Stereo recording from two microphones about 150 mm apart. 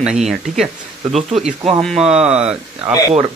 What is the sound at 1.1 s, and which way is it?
Speech, 50° right (ahead or behind).